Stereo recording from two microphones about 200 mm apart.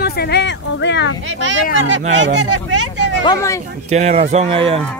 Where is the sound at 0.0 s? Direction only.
50° left (ahead or behind).